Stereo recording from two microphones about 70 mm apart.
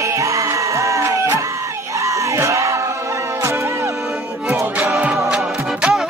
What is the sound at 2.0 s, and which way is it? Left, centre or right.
Crowd, right.